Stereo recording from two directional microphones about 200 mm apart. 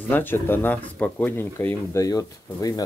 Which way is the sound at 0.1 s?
10° left (ahead or behind).